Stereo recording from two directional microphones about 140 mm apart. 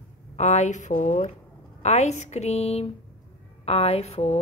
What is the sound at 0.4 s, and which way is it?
Speech, 55° left (ahead or behind).